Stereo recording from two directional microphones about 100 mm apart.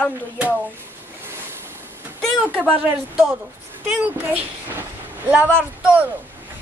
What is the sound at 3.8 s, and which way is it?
A child's voice, 15° right (ahead or behind).